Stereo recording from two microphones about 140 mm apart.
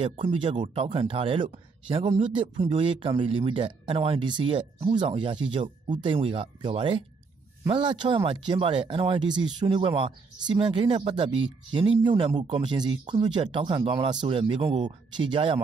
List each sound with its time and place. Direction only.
0.0 s speech: 40° right (ahead or behind)